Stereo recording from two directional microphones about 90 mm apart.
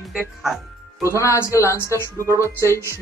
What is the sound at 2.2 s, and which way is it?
Speech, 35° right (ahead or behind).